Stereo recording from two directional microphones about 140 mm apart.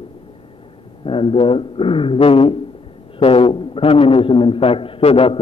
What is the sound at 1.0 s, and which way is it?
A man's voice, 40° left (ahead or behind).